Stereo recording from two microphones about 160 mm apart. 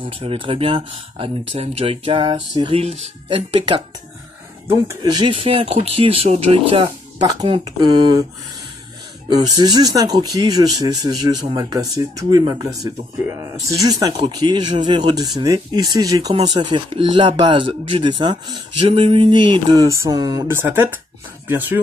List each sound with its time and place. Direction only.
0.2 s speech: 35° right (ahead or behind)
2.8 s speech: 40° right (ahead or behind)
4.6 s speech: 15° right (ahead or behind)
5.2 s speech: 35° right (ahead or behind)
9.6 s speech: 25° right (ahead or behind)
20.4 s speech: 15° right (ahead or behind)